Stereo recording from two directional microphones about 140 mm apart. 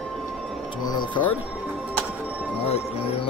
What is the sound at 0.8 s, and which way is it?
Speech, 30° left (ahead or behind).